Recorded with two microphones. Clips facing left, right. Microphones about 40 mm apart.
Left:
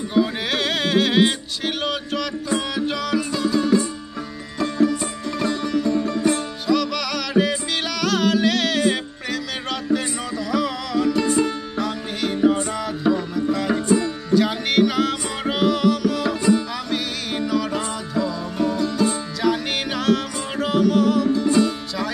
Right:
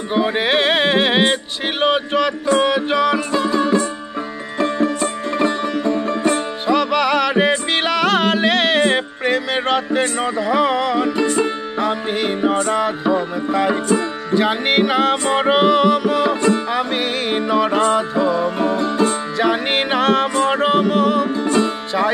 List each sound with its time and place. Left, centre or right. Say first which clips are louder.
0.1 s music: right 5 dB; right